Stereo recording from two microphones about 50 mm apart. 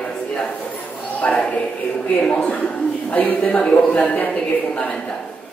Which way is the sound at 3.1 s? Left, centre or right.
Left.